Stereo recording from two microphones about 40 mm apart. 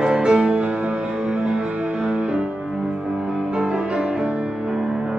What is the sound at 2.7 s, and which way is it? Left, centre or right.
Music, centre.